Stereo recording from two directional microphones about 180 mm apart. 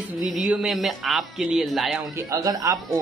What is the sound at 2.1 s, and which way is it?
Speech, 20° right (ahead or behind).